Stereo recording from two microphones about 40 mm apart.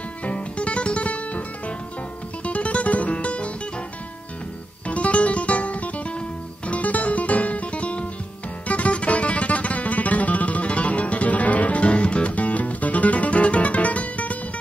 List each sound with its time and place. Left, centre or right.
0.2 s music: left
2.4 s music: left
4.8 s music: left